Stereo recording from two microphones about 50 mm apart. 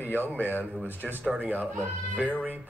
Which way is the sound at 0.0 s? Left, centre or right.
Left.